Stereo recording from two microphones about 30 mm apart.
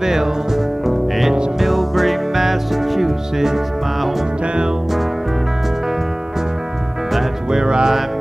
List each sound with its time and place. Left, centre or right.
0.0 s music: centre
7.5 s music: right